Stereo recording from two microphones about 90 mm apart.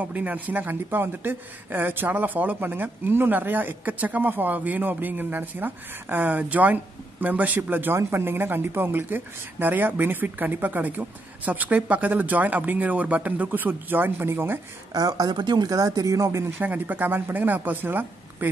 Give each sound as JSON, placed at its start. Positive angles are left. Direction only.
{"t": 0.0, "sound": "speech", "side_deg": -15}
{"t": 14.9, "sound": "speech", "side_deg": -45}
{"t": 15.7, "sound": "speech", "side_deg": -40}